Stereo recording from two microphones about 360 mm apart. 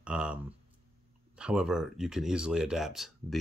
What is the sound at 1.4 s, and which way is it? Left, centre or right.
Speech, centre.